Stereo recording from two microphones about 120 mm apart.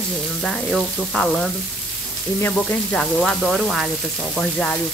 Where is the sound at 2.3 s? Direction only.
15° left (ahead or behind).